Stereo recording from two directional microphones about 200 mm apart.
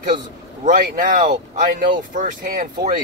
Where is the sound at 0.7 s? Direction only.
40° right (ahead or behind).